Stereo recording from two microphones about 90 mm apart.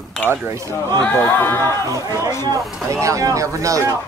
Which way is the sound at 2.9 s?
35° right (ahead or behind).